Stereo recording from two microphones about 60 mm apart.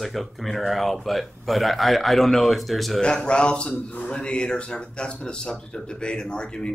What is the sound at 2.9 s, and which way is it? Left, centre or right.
Speech, centre.